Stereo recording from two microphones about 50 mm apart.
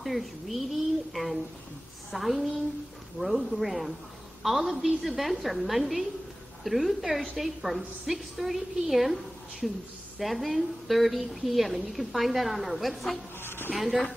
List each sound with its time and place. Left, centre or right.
0.0 s a woman's voice: centre
13.4 s a sound: left
13.7 s a woman's voice: centre